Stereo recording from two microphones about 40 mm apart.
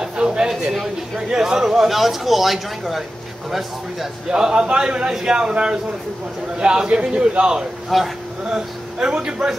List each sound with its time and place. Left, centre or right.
0.0 s a sound: right
1.1 s speech: centre
4.3 s a man's voice: right
7.9 s speech: centre
8.5 s a man's voice: centre